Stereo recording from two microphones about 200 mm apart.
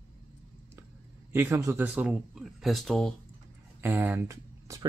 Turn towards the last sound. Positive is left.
turn(degrees=-15)  # may be behind; listen again after turning